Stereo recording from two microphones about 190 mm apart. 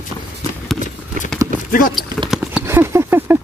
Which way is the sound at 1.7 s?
45° left (ahead or behind).